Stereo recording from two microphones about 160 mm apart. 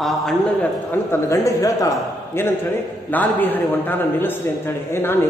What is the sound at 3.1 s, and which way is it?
A man's voice, 10° left (ahead or behind).